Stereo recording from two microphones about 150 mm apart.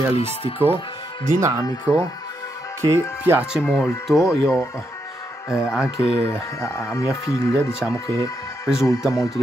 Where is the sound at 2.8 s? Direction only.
15° right (ahead or behind).